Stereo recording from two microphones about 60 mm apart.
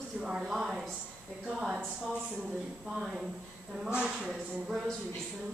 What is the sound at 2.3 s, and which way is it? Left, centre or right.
A woman's voice, centre.